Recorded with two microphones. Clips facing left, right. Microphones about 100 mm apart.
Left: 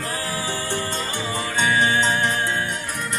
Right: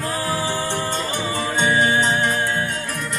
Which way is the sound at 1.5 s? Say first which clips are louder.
Right 1 dB; 25° right (ahead or behind).